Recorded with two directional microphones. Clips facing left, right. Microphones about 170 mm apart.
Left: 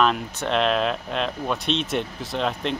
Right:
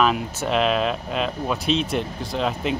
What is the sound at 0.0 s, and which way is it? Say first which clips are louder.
Speech: right 1 dB; 5° right (ahead or behind).